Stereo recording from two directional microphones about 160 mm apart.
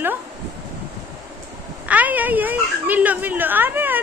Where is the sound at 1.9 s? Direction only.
10° right (ahead or behind).